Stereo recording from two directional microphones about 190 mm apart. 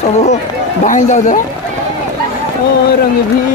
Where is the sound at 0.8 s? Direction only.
40° left (ahead or behind).